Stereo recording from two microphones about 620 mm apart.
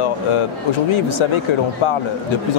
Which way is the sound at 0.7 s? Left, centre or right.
Left.